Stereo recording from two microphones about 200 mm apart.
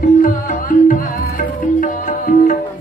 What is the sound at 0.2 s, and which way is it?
Music, 45° left (ahead or behind).